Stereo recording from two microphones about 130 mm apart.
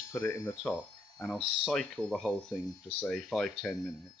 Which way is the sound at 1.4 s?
5° right (ahead or behind).